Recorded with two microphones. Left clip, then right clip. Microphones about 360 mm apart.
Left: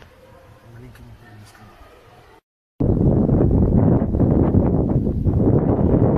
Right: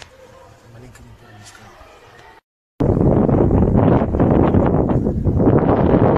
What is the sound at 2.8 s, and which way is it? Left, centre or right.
Wind noise, right.